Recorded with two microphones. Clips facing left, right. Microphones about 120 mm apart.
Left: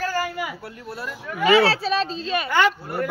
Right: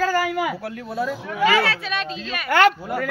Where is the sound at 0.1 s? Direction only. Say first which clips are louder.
Right 5 dB; 90° right.